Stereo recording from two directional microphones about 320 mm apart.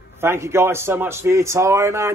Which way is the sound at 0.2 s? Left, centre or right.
Centre.